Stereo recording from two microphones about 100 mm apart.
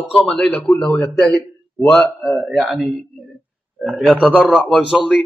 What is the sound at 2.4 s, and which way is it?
Speech, 10° right (ahead or behind).